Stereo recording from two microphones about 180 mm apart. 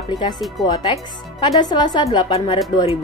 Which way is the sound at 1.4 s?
25° left (ahead or behind).